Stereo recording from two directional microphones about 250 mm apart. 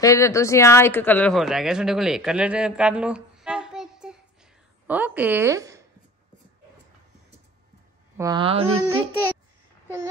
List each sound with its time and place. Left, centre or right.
0.0 s a woman's voice: centre
8.2 s speech: centre